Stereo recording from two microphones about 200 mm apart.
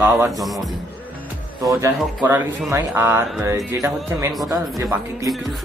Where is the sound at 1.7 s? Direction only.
10° right (ahead or behind).